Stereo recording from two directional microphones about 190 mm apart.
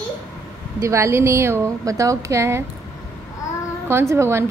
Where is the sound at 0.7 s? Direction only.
15° right (ahead or behind).